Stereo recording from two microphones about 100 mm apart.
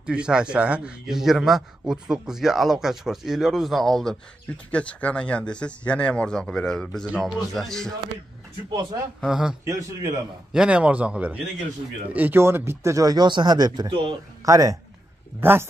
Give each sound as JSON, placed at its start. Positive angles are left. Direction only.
{"t": 0.0, "sound": "a man's voice", "side_deg": -10}
{"t": 4.6, "sound": "a man's voice", "side_deg": 15}
{"t": 9.2, "sound": "a man's voice", "side_deg": -5}
{"t": 9.7, "sound": "speech", "side_deg": -30}
{"t": 10.5, "sound": "a man's voice", "side_deg": -10}
{"t": 15.4, "sound": "speech", "side_deg": -25}